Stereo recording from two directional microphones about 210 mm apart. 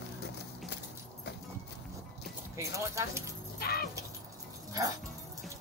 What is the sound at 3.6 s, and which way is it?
Music, 45° left (ahead or behind).